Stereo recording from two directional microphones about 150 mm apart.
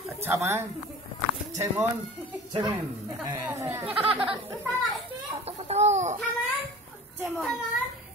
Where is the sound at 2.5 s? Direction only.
30° right (ahead or behind).